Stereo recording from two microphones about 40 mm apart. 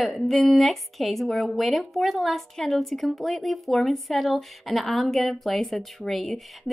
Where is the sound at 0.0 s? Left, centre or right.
Centre.